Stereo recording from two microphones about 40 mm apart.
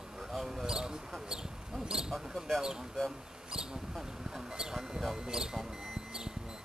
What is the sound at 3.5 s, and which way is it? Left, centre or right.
Mouse, centre.